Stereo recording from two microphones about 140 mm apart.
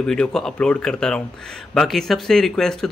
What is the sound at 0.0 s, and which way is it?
A man's voice, 5° left (ahead or behind).